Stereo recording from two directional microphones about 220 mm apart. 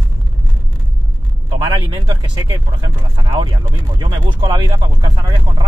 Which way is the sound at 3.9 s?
20° right (ahead or behind).